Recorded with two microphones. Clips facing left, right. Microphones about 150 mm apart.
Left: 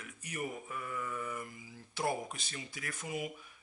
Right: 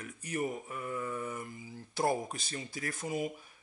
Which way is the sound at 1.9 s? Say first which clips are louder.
Right 4 dB; 40° right (ahead or behind).